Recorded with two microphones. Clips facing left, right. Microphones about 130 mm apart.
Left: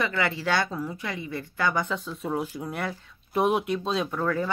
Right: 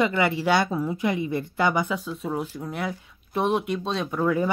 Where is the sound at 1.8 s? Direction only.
5° right (ahead or behind).